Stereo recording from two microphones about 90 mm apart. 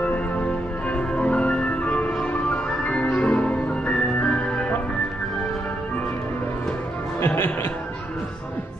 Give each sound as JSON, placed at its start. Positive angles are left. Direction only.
{"t": 0.0, "sound": "music", "side_deg": 15}
{"t": 7.2, "sound": "music", "side_deg": 25}